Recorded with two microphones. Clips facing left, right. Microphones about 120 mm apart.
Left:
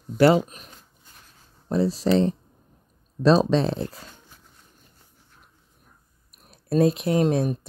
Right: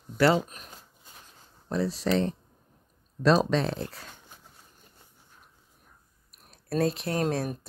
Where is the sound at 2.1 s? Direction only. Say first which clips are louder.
Left 5 dB; 25° left (ahead or behind).